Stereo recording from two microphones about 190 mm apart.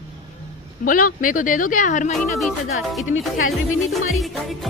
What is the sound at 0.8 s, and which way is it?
Speech, 45° left (ahead or behind).